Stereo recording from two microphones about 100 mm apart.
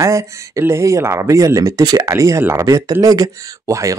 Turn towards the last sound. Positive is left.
turn(degrees=-35)  # may be behind; listen again after turning